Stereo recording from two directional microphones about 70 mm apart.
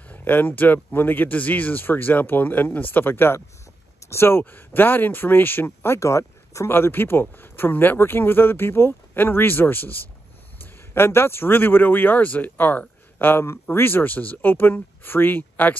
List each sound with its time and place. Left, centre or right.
0.1 s speech: left
5.9 s speech: left
6.7 s speech: left